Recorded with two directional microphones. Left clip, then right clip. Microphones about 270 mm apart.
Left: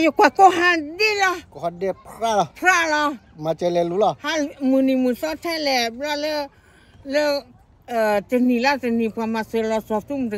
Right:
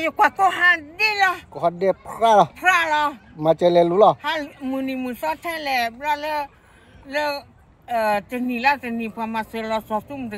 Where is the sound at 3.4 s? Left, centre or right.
Right.